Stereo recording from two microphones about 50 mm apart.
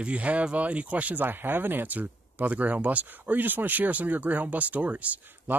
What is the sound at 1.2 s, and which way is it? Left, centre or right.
Speech, right.